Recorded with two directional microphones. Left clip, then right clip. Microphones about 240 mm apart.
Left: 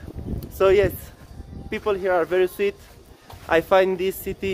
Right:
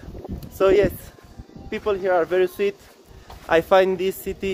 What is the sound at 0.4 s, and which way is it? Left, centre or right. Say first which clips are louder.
A man's voice: even; centre.